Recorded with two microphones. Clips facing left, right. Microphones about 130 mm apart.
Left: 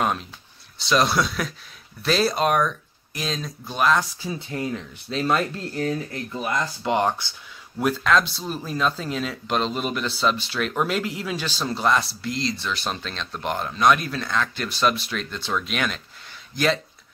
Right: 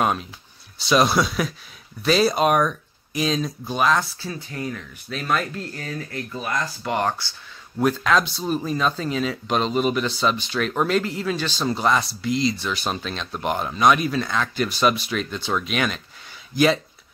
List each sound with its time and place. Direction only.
0.0 s speech: 5° right (ahead or behind)
4.2 s speech: 20° left (ahead or behind)
5.9 s speech: 15° left (ahead or behind)
7.8 s speech: centre (ahead or behind)